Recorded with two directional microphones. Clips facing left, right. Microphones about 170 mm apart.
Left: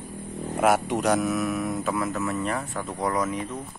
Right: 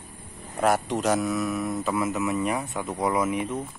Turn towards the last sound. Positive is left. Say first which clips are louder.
# right 2 dB
turn(degrees=-10)  # may be behind; listen again after turning